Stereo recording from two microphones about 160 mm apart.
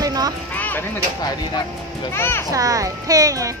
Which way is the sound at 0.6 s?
10° left (ahead or behind).